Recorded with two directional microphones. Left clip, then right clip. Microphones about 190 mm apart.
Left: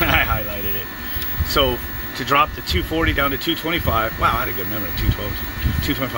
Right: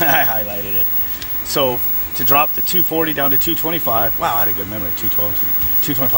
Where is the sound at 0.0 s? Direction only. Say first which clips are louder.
Right 1 dB; 15° right (ahead or behind).